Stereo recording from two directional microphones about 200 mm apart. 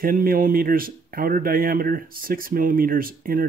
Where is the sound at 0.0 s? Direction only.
45° right (ahead or behind).